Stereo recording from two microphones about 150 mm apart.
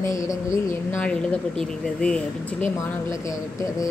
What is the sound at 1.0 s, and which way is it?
Speech, 5° left (ahead or behind).